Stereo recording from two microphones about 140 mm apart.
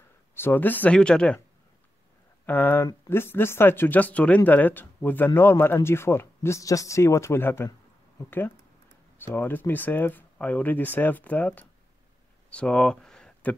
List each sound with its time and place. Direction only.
0.3 s speech: 15° left (ahead or behind)
2.4 s speech: 15° left (ahead or behind)
12.4 s a sound: 5° left (ahead or behind)